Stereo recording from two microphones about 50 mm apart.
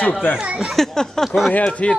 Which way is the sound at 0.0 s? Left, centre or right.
Left.